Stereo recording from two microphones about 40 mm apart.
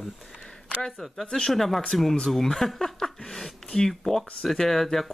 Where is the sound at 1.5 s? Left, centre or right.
Centre.